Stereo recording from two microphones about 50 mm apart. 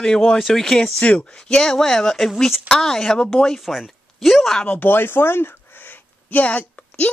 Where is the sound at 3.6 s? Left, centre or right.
Centre.